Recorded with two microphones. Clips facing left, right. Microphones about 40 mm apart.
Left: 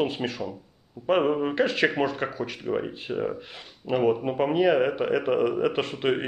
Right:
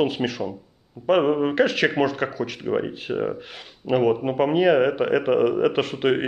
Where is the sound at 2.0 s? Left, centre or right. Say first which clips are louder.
Right 4 dB; centre.